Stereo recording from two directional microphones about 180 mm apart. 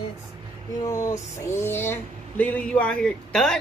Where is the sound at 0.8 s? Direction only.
20° left (ahead or behind).